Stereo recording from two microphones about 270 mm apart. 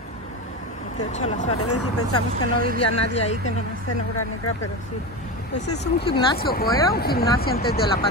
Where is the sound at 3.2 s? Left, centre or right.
Left.